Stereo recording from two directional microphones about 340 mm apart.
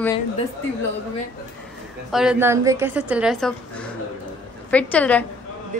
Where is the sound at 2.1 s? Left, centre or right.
Centre.